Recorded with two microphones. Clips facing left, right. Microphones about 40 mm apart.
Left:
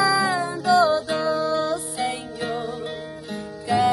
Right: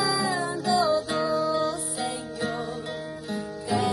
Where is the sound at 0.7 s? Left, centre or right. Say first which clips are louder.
Left 6 dB; left.